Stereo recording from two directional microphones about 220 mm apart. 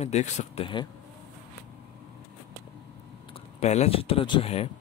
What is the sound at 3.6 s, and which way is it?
Speech, 30° left (ahead or behind).